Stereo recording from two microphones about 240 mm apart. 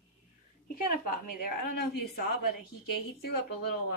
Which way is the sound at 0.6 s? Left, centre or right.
Left.